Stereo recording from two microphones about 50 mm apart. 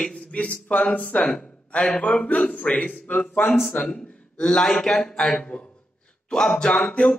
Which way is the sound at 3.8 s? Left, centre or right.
Centre.